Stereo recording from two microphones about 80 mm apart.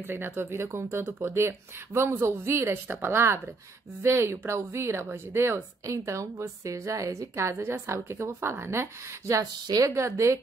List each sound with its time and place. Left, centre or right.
0.0 s a woman's voice: right
9.3 s a woman's voice: right